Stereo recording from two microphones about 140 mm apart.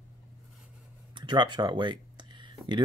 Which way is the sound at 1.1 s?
35° right (ahead or behind).